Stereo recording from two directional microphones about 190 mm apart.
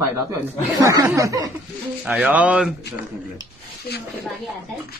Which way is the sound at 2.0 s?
5° right (ahead or behind).